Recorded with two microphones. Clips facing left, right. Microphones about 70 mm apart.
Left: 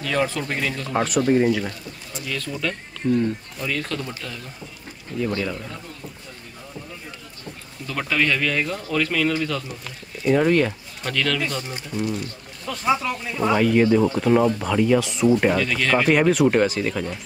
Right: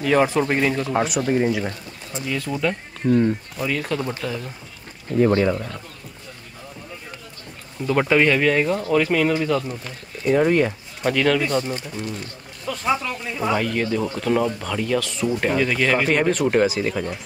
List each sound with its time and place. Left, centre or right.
0.0 s speech: right
0.8 s speech: centre
1.5 s speech: centre
3.5 s speech: centre
5.1 s speech: right
7.8 s speech: right
9.8 s speech: centre
11.7 s speech: centre
12.6 s speech: centre
15.2 s speech: centre
15.5 s speech: centre
16.1 s speech: centre